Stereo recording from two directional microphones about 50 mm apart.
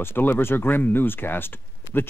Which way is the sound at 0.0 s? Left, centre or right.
Left.